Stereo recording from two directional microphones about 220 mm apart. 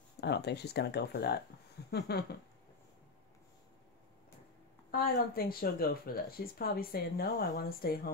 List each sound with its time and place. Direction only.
0.2 s speech: 50° left (ahead or behind)
5.3 s speech: 40° left (ahead or behind)